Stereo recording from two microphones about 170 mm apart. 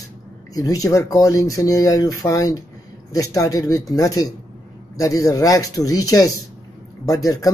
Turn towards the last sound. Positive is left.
turn(degrees=20)  # may be behind; listen again after turning